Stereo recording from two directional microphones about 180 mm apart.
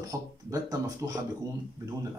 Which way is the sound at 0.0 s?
20° right (ahead or behind).